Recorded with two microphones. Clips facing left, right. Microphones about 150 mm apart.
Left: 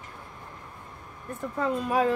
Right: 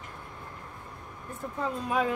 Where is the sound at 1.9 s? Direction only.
45° left (ahead or behind).